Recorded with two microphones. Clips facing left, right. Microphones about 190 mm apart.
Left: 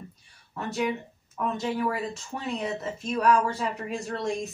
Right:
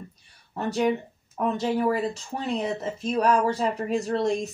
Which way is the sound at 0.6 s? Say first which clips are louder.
Right 5 dB; 35° right (ahead or behind).